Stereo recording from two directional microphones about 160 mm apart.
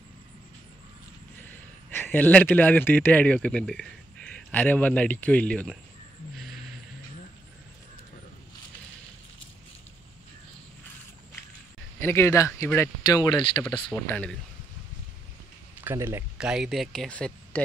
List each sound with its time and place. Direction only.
1.4 s speech: 15° left (ahead or behind)
6.3 s vehicle: centre (ahead or behind)
12.0 s speech: 15° left (ahead or behind)
13.9 s speech: 10° left (ahead or behind)
15.8 s speech: 15° right (ahead or behind)
16.3 s speech: 5° right (ahead or behind)